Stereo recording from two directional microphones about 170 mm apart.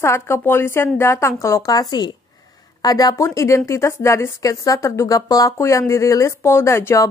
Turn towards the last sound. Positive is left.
turn(degrees=15)  # may be behind; listen again after turning